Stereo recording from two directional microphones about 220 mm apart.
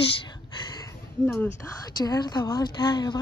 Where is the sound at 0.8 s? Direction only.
10° left (ahead or behind).